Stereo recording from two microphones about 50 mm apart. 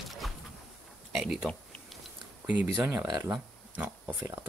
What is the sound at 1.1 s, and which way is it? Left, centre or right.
Speech, centre.